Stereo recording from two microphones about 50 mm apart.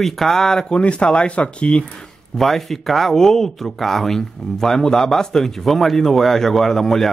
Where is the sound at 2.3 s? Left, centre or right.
Centre.